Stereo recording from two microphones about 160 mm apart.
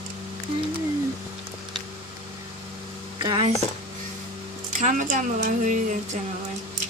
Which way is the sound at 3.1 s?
30° right (ahead or behind).